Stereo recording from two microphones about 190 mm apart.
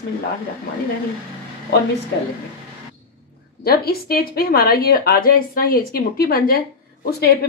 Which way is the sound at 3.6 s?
55° left (ahead or behind).